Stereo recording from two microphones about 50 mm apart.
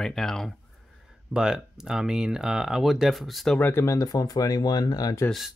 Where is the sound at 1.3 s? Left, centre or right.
Centre.